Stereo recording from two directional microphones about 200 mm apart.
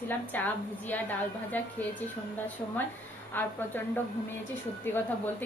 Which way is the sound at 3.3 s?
10° left (ahead or behind).